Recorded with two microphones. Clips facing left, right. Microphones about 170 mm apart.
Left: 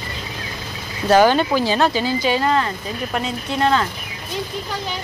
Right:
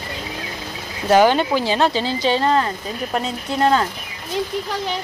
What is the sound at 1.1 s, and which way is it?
A woman's voice, 20° right (ahead or behind).